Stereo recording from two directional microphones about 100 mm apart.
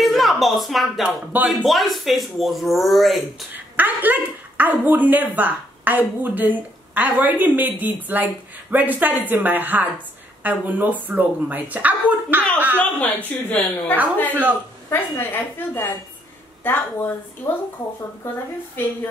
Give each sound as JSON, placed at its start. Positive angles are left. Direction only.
{"t": 0.0, "sound": "a sound", "side_deg": 0}
{"t": 1.0, "sound": "speech", "side_deg": -15}
{"t": 1.6, "sound": "speech", "side_deg": 0}
{"t": 3.5, "sound": "speech", "side_deg": -15}
{"t": 12.7, "sound": "a woman's voice", "side_deg": 20}